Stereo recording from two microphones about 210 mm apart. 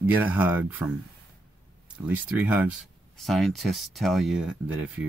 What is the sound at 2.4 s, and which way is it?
Speech, 5° right (ahead or behind).